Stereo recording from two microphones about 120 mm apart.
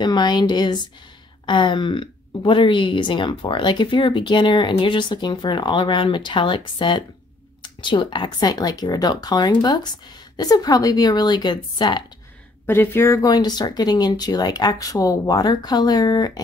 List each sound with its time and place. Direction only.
0.0 s speech: 35° left (ahead or behind)
12.6 s speech: 15° left (ahead or behind); by 16.3 s 35° left (ahead or behind)